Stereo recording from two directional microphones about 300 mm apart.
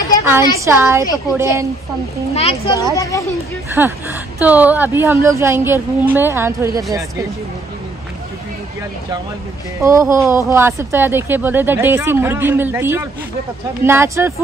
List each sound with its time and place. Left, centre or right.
0.7 s a woman's voice: centre
2.3 s a child's voice: centre
3.7 s a woman's voice: centre
9.8 s a woman's voice: centre